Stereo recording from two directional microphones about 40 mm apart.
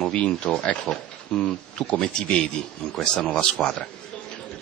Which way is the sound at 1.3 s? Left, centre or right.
Left.